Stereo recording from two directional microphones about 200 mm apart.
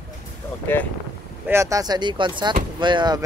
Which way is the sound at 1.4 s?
15° right (ahead or behind).